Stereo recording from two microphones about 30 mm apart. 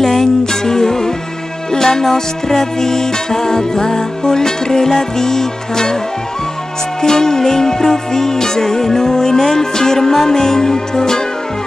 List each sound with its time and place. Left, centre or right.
0.0 s music: centre
7.0 s music: centre